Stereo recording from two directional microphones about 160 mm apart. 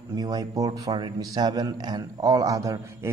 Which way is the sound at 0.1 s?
25° right (ahead or behind).